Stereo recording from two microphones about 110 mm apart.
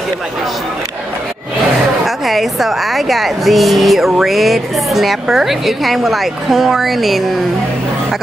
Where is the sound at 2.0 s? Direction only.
Centre (ahead or behind).